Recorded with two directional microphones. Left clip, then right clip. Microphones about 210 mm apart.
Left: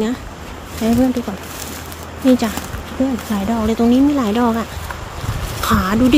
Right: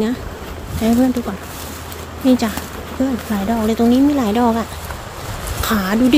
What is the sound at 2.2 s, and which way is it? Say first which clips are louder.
A woman's voice: left 1 dB; centre (ahead or behind).